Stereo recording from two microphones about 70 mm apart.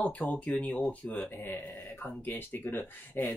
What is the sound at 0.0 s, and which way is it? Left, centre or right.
Speech, centre.